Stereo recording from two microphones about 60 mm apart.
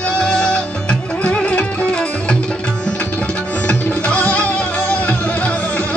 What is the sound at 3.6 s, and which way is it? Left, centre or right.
Music, left.